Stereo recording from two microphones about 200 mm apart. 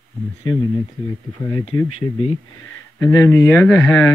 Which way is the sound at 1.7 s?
30° left (ahead or behind).